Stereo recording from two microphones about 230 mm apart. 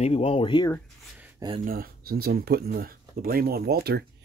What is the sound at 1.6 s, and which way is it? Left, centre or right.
Speech, right.